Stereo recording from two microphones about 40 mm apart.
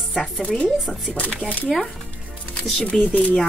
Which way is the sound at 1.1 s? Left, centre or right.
Left.